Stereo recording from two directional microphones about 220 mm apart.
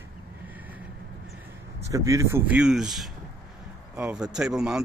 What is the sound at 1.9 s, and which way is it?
Speech, 15° right (ahead or behind).